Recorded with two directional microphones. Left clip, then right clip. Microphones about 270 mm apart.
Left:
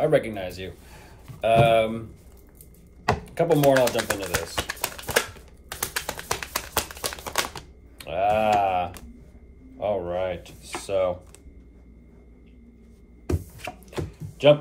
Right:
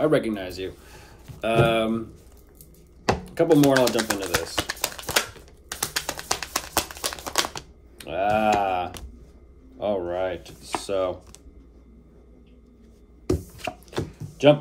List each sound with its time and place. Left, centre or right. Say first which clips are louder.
0.0 s speech: even; centre
3.1 s typewriter: right 2 dB; centre
5.7 s a sound: right 1 dB; centre
9.8 s speech: even; centre
13.3 s chopping: right 4 dB; centre